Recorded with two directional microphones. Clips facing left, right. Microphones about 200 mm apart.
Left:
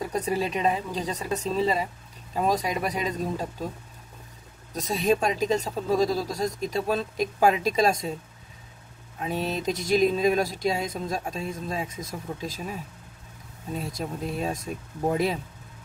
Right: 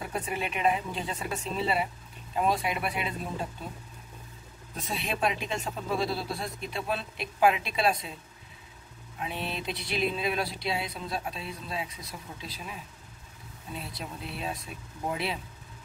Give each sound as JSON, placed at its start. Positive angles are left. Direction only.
{"t": 0.0, "sound": "speech", "side_deg": 35}
{"t": 4.7, "sound": "speech", "side_deg": 40}
{"t": 9.2, "sound": "speech", "side_deg": 40}
{"t": 13.7, "sound": "speech", "side_deg": 45}